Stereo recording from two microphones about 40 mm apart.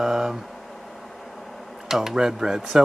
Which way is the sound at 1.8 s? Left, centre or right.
Centre.